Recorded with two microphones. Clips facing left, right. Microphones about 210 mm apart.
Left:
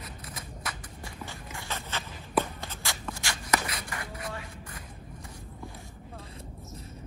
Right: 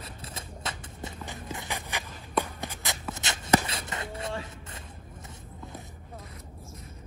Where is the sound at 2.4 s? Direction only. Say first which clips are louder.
Right 1 dB; 15° right (ahead or behind).